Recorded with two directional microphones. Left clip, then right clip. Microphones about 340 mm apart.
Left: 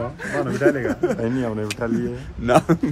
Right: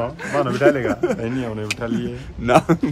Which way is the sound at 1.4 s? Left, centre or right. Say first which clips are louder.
Left 1 dB; centre.